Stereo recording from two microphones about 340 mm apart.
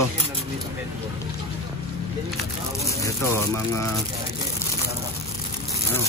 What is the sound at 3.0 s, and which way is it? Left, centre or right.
Speech, centre.